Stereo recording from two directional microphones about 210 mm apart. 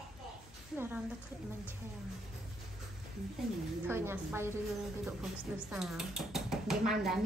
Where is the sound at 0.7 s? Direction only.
10° right (ahead or behind).